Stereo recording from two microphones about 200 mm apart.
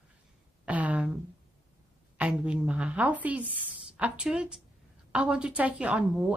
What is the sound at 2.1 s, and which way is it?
A woman's voice, 5° right (ahead or behind).